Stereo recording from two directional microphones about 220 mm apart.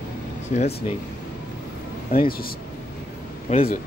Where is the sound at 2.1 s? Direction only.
40° left (ahead or behind).